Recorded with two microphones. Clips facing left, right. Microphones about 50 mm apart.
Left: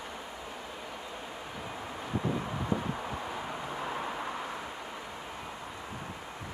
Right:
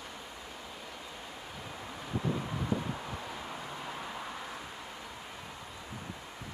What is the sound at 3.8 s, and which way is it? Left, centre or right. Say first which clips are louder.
Vehicle: left 7 dB; left.